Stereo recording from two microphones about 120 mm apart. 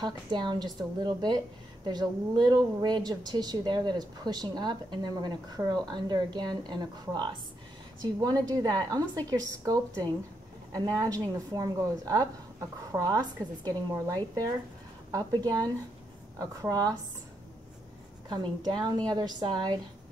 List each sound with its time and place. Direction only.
0.0 s a woman's voice: 35° right (ahead or behind)
18.3 s a woman's voice: 35° right (ahead or behind)